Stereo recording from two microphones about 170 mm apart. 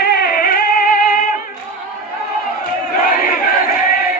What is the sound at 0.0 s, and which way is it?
Music, 65° left (ahead or behind).